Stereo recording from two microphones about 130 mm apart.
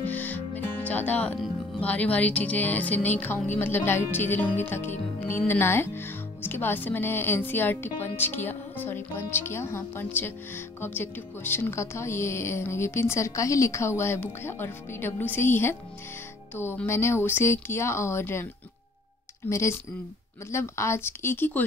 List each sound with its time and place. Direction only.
0.0 s music: 10° left (ahead or behind)
0.8 s speech: 10° left (ahead or behind)
19.5 s speech: 20° left (ahead or behind)